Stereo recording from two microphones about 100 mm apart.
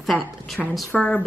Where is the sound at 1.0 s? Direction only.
10° left (ahead or behind).